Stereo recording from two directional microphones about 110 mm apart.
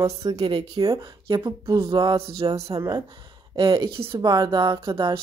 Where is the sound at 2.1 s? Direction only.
60° right (ahead or behind).